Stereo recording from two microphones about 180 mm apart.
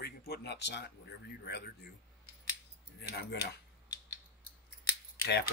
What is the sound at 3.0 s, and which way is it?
Speech, 65° left (ahead or behind).